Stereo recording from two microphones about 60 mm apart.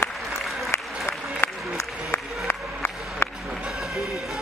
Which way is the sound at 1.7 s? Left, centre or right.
Left.